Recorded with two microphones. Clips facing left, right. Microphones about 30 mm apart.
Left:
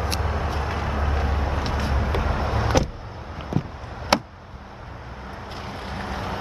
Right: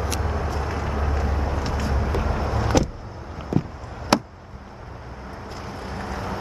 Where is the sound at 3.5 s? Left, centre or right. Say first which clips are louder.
Right 3 dB; centre.